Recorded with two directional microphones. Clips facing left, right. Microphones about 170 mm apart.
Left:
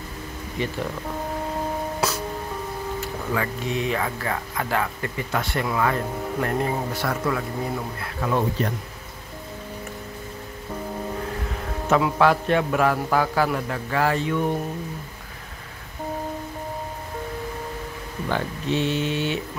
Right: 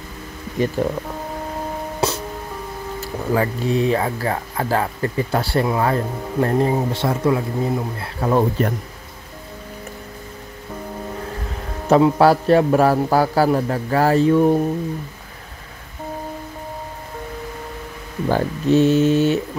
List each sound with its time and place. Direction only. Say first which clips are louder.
0.6 s speech: right 7 dB; 45° right (ahead or behind)
2.0 s music: right 7 dB; 30° right (ahead or behind)
3.0 s speech: right 8 dB; 35° right (ahead or behind)
11.9 s speech: right 6 dB; 35° right (ahead or behind)
18.3 s speech: right 8 dB; 40° right (ahead or behind)